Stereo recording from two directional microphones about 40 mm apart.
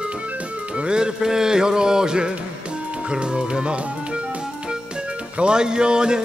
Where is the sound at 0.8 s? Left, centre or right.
Right.